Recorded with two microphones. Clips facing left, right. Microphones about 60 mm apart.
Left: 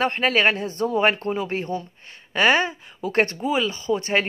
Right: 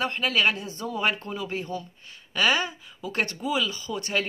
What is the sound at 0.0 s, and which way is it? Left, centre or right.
Speech, left.